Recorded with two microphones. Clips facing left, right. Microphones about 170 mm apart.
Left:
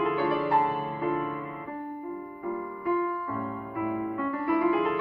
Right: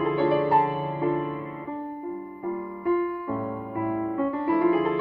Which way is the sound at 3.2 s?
25° right (ahead or behind).